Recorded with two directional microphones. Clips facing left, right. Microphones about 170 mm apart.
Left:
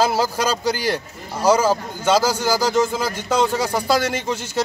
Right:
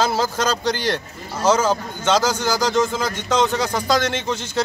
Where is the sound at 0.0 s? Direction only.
10° left (ahead or behind).